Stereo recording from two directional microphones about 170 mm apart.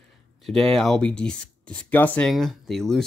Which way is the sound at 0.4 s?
Centre (ahead or behind).